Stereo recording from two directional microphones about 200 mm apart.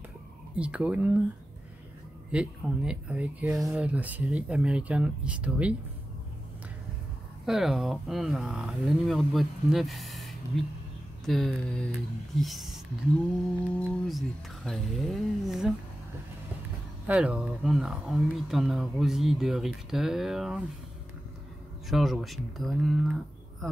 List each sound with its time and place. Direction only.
0.6 s speech: 5° right (ahead or behind)
2.3 s speech: 5° right (ahead or behind)
7.4 s speech: centre (ahead or behind)
17.1 s speech: 5° right (ahead or behind)
21.8 s speech: centre (ahead or behind)